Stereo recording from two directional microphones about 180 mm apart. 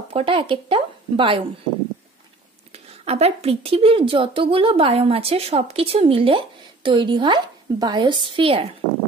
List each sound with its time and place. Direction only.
0.1 s speech: 30° right (ahead or behind)
2.7 s a woman's voice: 35° right (ahead or behind)